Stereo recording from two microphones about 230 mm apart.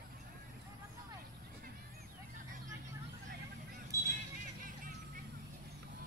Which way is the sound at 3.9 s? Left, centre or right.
Centre.